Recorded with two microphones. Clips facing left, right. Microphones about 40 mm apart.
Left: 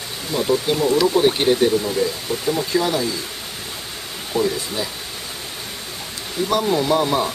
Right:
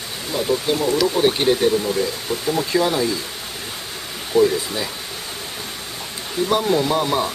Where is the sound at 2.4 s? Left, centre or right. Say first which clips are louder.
Right 1 dB; centre.